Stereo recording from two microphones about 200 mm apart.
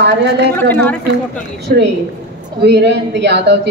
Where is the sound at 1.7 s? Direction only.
55° right (ahead or behind).